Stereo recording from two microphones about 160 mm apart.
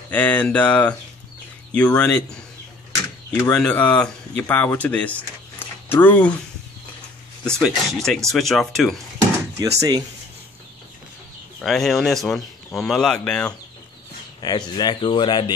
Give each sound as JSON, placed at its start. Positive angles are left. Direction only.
{"t": 0.1, "sound": "speech", "side_deg": 10}
{"t": 3.5, "sound": "speech", "side_deg": 10}
{"t": 7.4, "sound": "speech", "side_deg": 5}
{"t": 9.6, "sound": "speech", "side_deg": -20}
{"t": 11.6, "sound": "speech", "side_deg": 0}
{"t": 14.4, "sound": "speech", "side_deg": 25}